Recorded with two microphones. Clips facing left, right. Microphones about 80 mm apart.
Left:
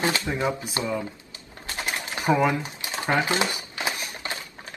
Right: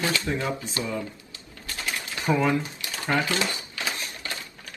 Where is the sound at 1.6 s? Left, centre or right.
Left.